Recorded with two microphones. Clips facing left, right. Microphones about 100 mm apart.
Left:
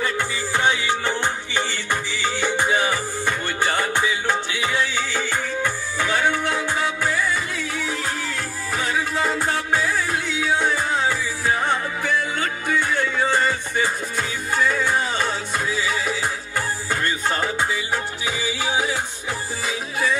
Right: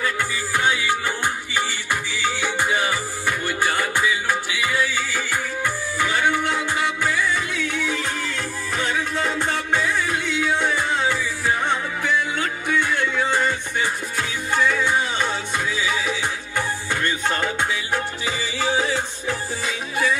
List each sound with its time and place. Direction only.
0.0 s music: 20° left (ahead or behind)
1.7 s music: 10° right (ahead or behind)
3.6 s music: 20° left (ahead or behind)
6.4 s music: centre (ahead or behind)